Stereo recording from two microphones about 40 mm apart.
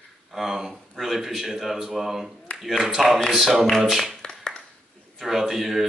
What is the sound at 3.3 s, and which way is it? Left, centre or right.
Speech, centre.